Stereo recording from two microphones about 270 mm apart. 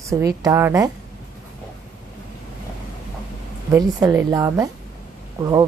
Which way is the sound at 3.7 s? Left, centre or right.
Centre.